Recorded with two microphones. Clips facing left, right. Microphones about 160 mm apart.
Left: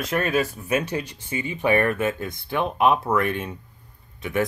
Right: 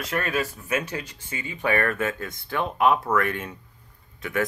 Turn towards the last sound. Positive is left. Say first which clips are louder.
# left 2 dB
turn(degrees=20)  # may be behind; listen again after turning